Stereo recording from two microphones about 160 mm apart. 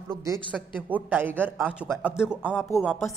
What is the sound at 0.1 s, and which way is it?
Speech, 20° right (ahead or behind).